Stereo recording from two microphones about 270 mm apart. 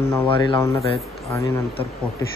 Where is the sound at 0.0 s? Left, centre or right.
Left.